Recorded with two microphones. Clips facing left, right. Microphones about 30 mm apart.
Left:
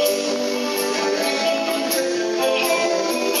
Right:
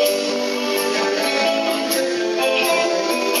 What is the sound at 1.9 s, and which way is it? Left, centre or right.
Music, right.